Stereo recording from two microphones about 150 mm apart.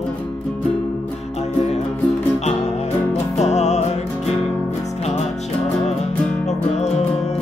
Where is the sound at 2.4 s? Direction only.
45° left (ahead or behind).